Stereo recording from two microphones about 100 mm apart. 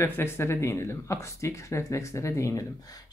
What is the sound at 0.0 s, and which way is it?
Speech, 25° left (ahead or behind).